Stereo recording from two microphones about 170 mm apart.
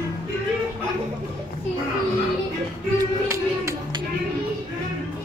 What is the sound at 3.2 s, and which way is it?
Music, 15° right (ahead or behind).